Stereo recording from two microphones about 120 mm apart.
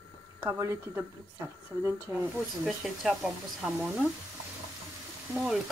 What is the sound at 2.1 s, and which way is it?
Speech, 30° right (ahead or behind).